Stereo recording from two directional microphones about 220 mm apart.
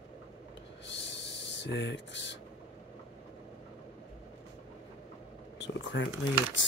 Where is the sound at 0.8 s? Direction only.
55° left (ahead or behind).